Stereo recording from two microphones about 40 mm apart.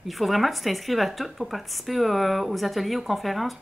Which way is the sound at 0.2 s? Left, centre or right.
Centre.